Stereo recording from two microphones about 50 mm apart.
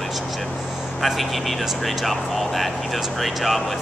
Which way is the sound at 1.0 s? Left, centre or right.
Centre.